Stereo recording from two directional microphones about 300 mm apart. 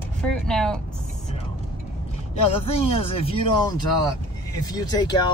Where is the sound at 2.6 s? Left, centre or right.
Centre.